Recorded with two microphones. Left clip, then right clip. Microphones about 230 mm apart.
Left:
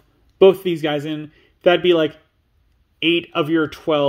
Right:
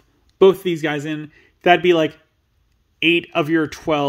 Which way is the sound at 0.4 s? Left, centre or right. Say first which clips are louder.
Left 1 dB; centre.